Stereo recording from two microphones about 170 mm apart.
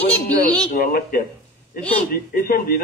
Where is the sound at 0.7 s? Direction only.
55° left (ahead or behind).